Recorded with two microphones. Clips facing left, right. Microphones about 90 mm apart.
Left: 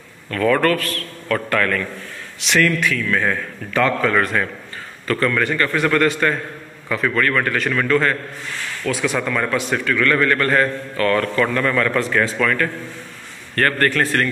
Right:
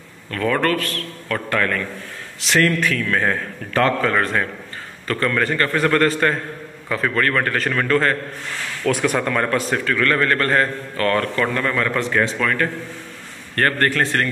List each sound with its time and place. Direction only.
0.3 s a man's voice: 25° right (ahead or behind)
8.8 s a man's voice: 55° right (ahead or behind); by 14.2 s 25° right (ahead or behind)